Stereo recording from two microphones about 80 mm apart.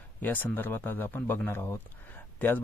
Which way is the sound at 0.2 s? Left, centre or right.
Left.